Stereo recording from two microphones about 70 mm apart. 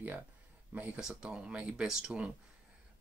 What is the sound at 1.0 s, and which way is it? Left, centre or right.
Speech, centre.